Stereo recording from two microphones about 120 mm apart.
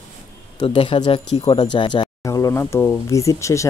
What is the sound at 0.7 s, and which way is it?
Speech, 45° left (ahead or behind).